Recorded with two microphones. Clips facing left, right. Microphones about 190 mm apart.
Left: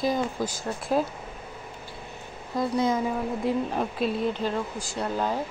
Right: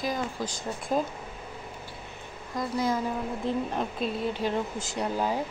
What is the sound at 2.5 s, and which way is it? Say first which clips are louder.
Speech: left 4 dB; 25° left (ahead or behind).